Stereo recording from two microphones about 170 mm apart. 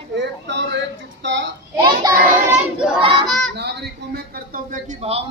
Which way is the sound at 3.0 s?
30° right (ahead or behind).